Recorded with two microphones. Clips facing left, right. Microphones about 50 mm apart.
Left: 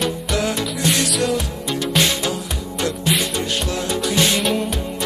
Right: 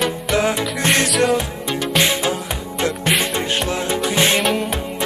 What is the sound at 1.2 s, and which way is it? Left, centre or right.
Music, right.